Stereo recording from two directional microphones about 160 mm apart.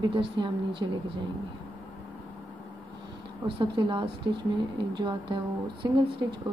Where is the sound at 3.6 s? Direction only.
30° right (ahead or behind).